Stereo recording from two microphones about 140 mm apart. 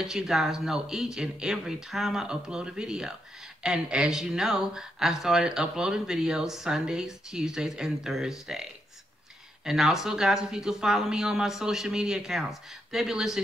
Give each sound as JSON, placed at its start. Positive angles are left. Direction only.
{"t": 0.0, "sound": "speech", "side_deg": -5}
{"t": 9.7, "sound": "speech", "side_deg": 0}